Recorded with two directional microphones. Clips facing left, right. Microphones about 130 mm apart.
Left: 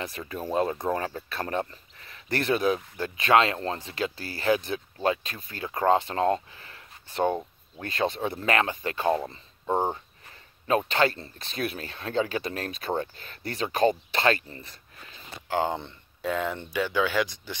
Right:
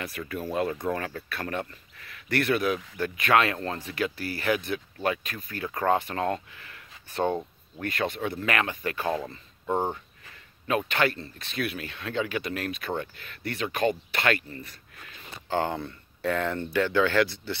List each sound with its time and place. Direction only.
0.2 s speech: 30° left (ahead or behind)
7.2 s speech: 10° left (ahead or behind)
7.8 s speech: 30° left (ahead or behind)
15.4 s speech: 15° left (ahead or behind)